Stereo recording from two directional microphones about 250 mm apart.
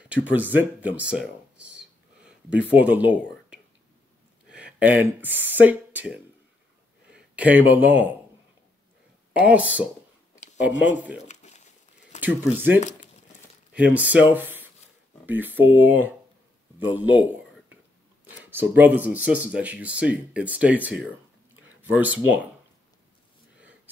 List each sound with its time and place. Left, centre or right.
0.1 s speech: centre
9.4 s speech: centre
11.2 s crumpling: left
12.5 s speech: centre
12.8 s crumpling: left
13.7 s speech: centre